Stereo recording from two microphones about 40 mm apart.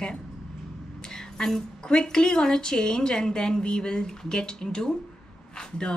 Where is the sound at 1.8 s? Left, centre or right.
Centre.